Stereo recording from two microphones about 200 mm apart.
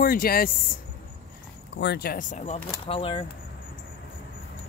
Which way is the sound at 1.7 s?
55° left (ahead or behind).